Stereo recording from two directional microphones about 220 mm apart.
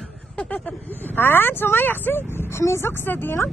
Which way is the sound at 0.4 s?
5° left (ahead or behind).